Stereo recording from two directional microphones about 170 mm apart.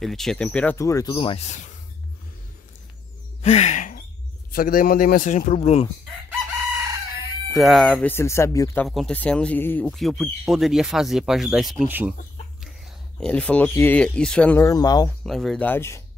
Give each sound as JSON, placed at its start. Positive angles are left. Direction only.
{"t": 0.0, "sound": "speech", "side_deg": 0}
{"t": 1.1, "sound": "speech", "side_deg": 30}
{"t": 3.4, "sound": "a sound", "side_deg": 40}
{"t": 4.5, "sound": "a man's voice", "side_deg": 55}
{"t": 7.5, "sound": "speech", "side_deg": 0}
{"t": 8.8, "sound": "speech", "side_deg": 0}
{"t": 9.8, "sound": "speech", "side_deg": 0}
{"t": 13.2, "sound": "speech", "side_deg": 5}
{"t": 14.7, "sound": "speech", "side_deg": 20}
{"t": 15.2, "sound": "speech", "side_deg": 0}